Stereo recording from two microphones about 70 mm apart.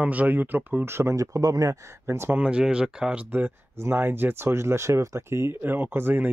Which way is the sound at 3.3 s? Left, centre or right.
Right.